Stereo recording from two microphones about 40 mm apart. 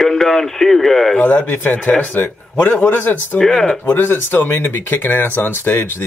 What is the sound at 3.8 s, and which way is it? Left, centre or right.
Speech, left.